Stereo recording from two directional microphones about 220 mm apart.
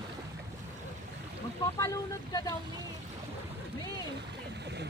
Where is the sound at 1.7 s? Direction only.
15° left (ahead or behind).